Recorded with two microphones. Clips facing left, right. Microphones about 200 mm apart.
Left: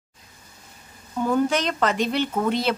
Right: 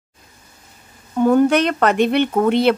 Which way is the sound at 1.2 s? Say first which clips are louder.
Right 8 dB; 60° right (ahead or behind).